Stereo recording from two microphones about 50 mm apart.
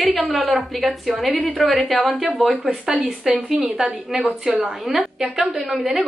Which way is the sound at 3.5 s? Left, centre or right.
Centre.